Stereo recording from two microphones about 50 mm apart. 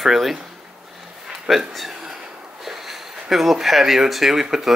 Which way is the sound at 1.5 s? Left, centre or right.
Centre.